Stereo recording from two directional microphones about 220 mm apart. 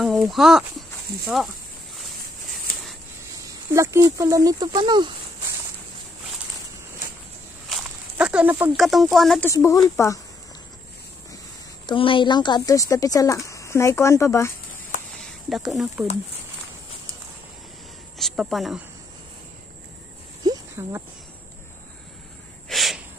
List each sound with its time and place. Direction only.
0.0 s speech: centre (ahead or behind)
3.7 s speech: 15° right (ahead or behind)
7.7 s snake: 5° right (ahead or behind)
9.1 s speech: centre (ahead or behind)
9.5 s speech: 15° left (ahead or behind)
11.8 s speech: 20° left (ahead or behind)
15.5 s speech: centre (ahead or behind)
18.1 s cricket: centre (ahead or behind)
20.4 s a sound: 15° right (ahead or behind)
22.7 s snort: centre (ahead or behind)